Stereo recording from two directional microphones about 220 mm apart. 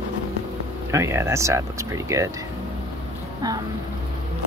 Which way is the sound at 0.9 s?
10° right (ahead or behind).